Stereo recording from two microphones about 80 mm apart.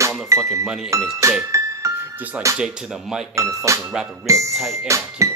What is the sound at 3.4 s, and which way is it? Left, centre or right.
Speech, right.